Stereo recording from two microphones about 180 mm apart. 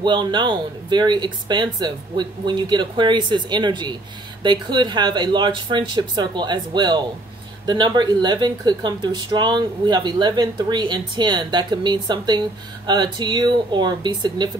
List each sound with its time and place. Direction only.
0.0 s speech: 25° right (ahead or behind)